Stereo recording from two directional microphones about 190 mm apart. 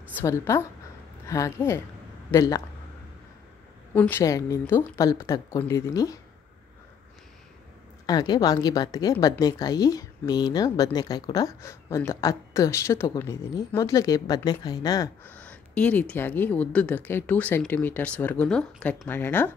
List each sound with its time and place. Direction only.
0.2 s a woman's voice: 15° left (ahead or behind)
3.9 s speech: 10° left (ahead or behind)
8.1 s a woman's voice: 20° left (ahead or behind)
15.2 s speech: 5° left (ahead or behind)